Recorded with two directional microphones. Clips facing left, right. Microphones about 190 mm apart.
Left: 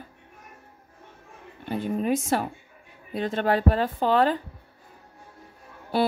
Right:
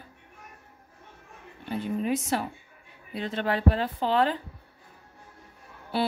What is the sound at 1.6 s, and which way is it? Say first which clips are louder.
Speech: left 3 dB; 50° left (ahead or behind).